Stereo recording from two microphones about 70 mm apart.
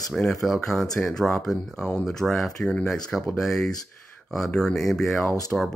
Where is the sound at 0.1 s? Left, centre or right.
Centre.